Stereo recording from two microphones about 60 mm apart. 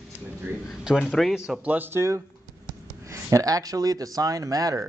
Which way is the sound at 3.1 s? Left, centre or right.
Right.